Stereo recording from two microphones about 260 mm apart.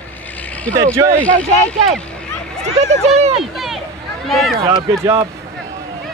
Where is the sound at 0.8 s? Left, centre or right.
Centre.